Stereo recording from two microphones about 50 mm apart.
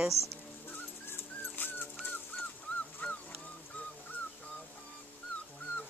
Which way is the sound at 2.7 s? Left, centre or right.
Left.